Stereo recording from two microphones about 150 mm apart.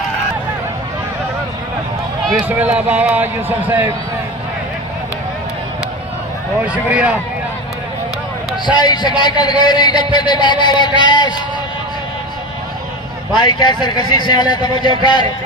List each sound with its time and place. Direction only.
2.4 s a man's voice: 10° right (ahead or behind)
6.6 s a man's voice: 10° right (ahead or behind)
8.6 s a man's voice: 30° left (ahead or behind)
13.4 s speech: 35° left (ahead or behind)